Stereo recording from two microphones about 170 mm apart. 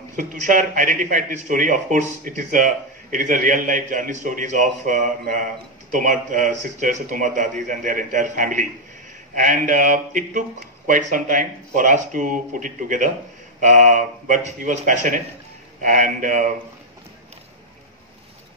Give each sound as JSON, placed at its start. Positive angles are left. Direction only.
{"t": 0.1, "sound": "a man's voice", "side_deg": -50}